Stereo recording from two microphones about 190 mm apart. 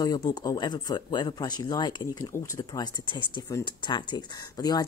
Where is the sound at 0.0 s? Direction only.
20° left (ahead or behind).